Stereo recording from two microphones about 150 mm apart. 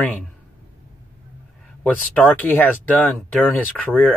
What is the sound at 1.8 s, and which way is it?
Speech, 10° left (ahead or behind).